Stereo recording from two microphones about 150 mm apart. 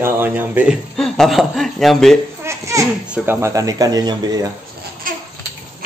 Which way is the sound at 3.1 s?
15° right (ahead or behind).